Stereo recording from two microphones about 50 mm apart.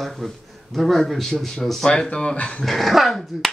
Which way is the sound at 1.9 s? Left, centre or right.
Left.